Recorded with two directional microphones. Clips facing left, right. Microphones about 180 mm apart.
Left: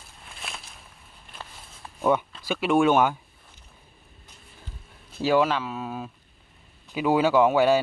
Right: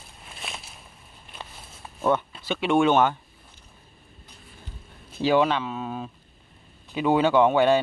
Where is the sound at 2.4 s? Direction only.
5° left (ahead or behind).